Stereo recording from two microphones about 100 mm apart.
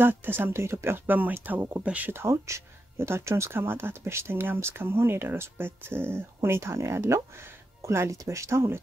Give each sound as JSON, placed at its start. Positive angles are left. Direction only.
{"t": 0.0, "sound": "speech", "side_deg": -20}